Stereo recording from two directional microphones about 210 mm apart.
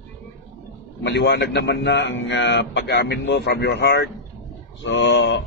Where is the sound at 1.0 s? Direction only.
55° left (ahead or behind).